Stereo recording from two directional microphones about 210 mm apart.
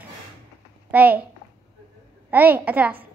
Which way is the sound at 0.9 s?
10° right (ahead or behind).